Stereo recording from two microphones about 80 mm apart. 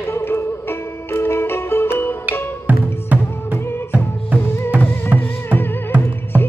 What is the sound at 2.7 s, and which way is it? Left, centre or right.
Music, right.